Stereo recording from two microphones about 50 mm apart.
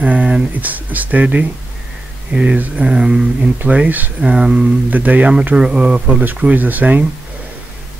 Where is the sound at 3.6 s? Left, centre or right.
Right.